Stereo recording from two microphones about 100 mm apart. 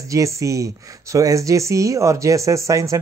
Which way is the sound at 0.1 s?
30° right (ahead or behind).